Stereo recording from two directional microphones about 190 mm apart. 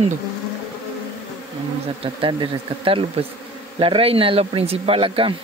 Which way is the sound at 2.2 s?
30° right (ahead or behind).